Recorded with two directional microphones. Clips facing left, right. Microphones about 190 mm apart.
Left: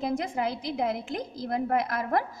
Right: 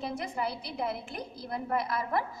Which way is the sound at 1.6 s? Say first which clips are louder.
Left 2 dB; 45° left (ahead or behind).